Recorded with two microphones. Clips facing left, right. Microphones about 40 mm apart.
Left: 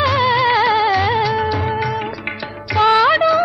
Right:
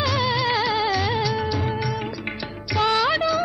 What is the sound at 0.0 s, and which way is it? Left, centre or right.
Music, left.